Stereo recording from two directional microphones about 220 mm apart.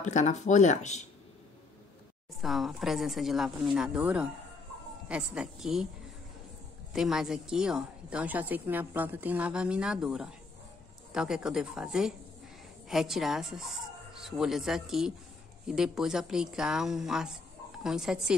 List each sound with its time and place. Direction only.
0.0 s speech: 35° left (ahead or behind)
2.4 s a woman's voice: centre (ahead or behind)
6.9 s a woman's voice: centre (ahead or behind)